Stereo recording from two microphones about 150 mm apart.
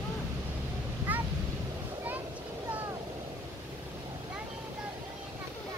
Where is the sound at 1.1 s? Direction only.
10° right (ahead or behind).